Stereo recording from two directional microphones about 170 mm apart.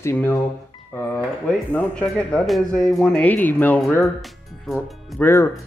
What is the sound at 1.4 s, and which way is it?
Speech, 5° left (ahead or behind).